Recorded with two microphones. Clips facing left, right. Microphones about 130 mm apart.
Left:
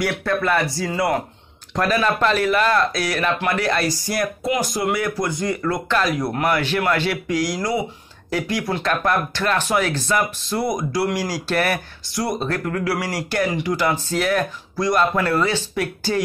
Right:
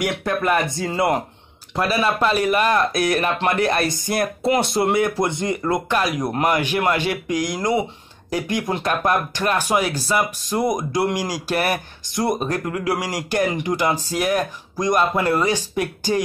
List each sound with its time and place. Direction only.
0.0 s speech: 15° right (ahead or behind)
1.8 s speech: 10° right (ahead or behind)